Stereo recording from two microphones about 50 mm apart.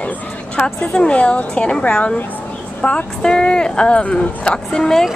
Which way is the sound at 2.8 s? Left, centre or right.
Left.